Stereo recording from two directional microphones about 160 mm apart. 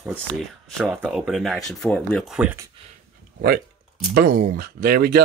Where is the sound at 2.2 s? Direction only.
5° right (ahead or behind).